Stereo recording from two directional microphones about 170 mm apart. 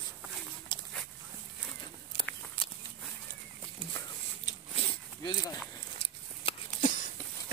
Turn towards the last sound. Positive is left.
turn(degrees=30)  # may be behind; listen again after turning